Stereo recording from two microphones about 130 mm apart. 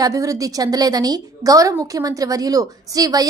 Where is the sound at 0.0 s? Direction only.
25° right (ahead or behind).